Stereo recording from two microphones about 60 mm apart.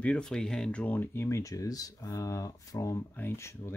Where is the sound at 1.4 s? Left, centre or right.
Left.